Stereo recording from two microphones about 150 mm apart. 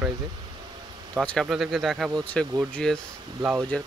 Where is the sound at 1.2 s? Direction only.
5° left (ahead or behind).